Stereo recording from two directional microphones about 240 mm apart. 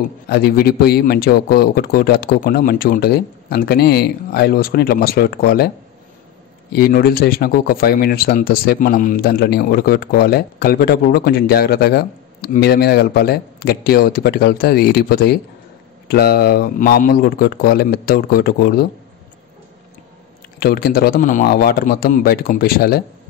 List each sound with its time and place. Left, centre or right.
0.3 s speech: left
6.7 s speech: left
20.5 s speech: left